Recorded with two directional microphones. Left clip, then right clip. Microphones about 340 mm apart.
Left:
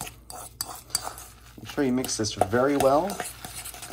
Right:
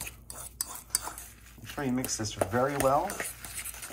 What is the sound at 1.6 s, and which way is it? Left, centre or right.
Speech, centre.